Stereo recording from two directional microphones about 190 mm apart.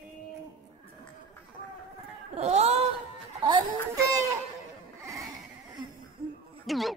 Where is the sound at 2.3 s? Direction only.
35° right (ahead or behind).